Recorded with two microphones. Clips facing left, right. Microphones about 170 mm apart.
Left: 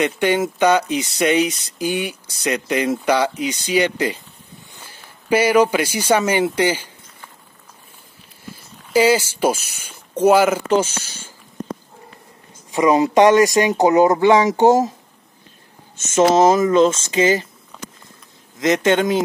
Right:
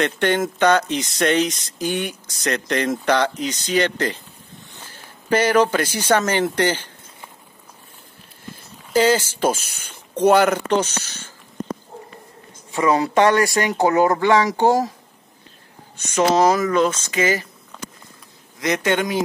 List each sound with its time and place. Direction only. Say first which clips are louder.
0.0 s speech: left 2 dB; 10° left (ahead or behind)
4.7 s a sound: right 1 dB; 10° left (ahead or behind)
5.3 s speech: left 2 dB; 10° left (ahead or behind)
8.9 s speech: left 2 dB; 10° left (ahead or behind)
12.7 s speech: left 3 dB; 15° left (ahead or behind)
16.2 s speech: left 3 dB; 20° left (ahead or behind)
18.6 s speech: left 4 dB; 25° left (ahead or behind)